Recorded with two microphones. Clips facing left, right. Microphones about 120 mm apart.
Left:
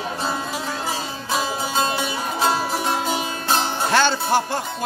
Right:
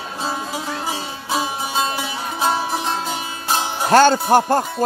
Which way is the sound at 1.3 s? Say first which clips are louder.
Right 1 dB; 15° right (ahead or behind).